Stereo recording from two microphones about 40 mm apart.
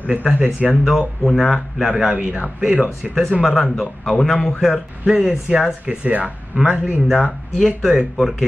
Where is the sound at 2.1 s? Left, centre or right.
Right.